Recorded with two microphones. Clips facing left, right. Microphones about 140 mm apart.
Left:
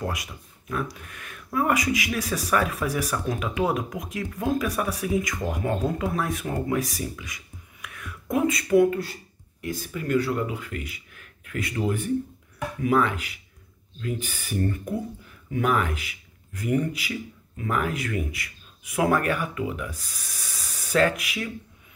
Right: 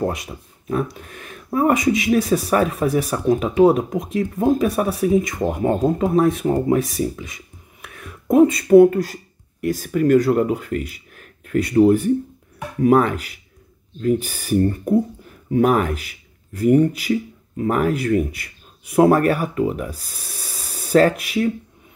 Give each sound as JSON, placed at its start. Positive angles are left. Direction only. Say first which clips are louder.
{"t": 0.0, "sound": "speech", "louder": "right 8 dB", "side_deg": -30}
{"t": 7.8, "sound": "a sound", "louder": "right 2 dB", "side_deg": -35}
{"t": 8.9, "sound": "speech", "louder": "right 7 dB", "side_deg": -50}